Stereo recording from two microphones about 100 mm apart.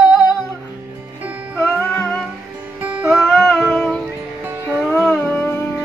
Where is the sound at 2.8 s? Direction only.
15° right (ahead or behind).